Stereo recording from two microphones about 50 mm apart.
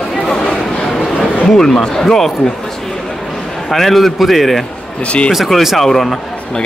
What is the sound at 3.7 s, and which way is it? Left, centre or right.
A man's voice, centre.